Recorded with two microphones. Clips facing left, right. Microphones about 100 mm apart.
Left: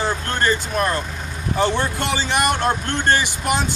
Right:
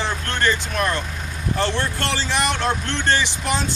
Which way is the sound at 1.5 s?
5° left (ahead or behind).